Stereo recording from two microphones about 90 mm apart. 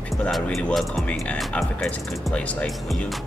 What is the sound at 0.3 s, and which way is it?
Speech, 5° left (ahead or behind).